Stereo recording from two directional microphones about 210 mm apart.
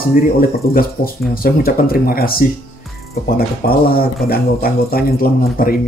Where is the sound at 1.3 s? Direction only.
45° left (ahead or behind).